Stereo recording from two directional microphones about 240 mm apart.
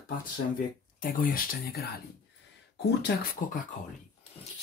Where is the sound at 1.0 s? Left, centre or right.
Left.